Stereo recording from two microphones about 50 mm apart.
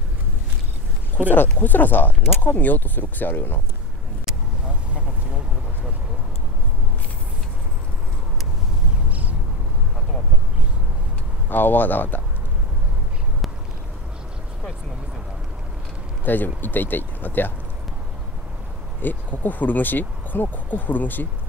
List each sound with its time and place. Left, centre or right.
1.6 s speech: left
11.4 s speech: left
16.3 s speech: left
18.9 s speech: left